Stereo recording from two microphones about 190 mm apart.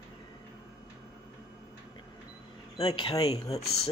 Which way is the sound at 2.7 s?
30° left (ahead or behind).